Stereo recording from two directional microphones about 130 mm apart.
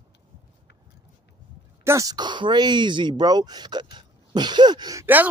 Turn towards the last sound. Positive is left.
turn(degrees=-15)  # may be behind; listen again after turning